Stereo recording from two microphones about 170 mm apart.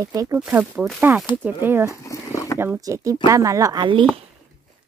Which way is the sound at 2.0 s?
20° left (ahead or behind).